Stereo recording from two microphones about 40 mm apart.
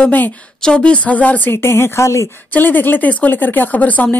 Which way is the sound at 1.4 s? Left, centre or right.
Left.